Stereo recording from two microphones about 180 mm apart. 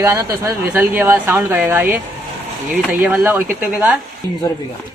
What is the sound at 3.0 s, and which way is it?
Speech, 5° right (ahead or behind).